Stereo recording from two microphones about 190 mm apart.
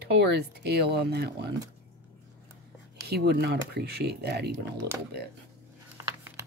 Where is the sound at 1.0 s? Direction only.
60° right (ahead or behind).